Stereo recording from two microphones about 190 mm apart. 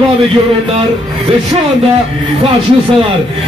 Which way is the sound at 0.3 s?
30° right (ahead or behind).